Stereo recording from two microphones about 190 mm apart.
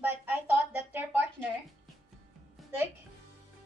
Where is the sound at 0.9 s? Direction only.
10° right (ahead or behind).